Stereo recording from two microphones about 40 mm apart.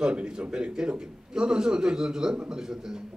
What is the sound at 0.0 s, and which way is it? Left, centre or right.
A man's voice, right.